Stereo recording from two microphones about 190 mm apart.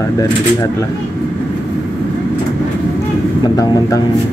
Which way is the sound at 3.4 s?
20° left (ahead or behind).